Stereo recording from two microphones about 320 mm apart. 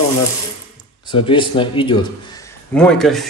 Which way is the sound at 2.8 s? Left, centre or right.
Centre.